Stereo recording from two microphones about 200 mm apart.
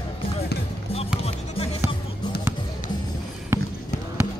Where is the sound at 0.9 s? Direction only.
30° left (ahead or behind).